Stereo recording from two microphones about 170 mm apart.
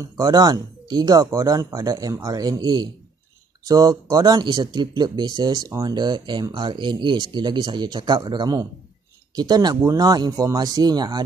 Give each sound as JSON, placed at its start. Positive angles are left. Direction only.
{"t": 0.0, "sound": "speech", "side_deg": -20}